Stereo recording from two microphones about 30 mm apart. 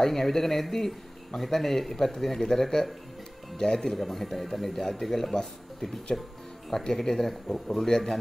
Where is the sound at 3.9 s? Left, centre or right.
Centre.